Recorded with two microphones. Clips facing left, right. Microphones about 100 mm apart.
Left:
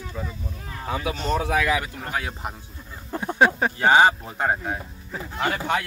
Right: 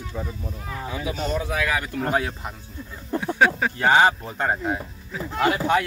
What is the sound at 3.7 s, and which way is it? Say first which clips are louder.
Speech: left 1 dB; 15° left (ahead or behind).